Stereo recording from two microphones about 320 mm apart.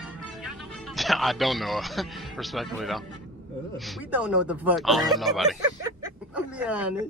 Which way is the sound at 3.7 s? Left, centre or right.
Centre.